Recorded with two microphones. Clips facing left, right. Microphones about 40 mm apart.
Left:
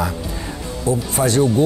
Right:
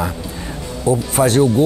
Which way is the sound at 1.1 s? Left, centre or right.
Right.